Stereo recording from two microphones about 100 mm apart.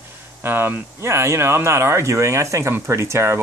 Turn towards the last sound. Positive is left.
turn(degrees=-25)  # may be behind; listen again after turning